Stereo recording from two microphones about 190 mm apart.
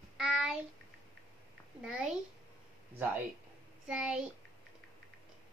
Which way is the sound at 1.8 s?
5° right (ahead or behind).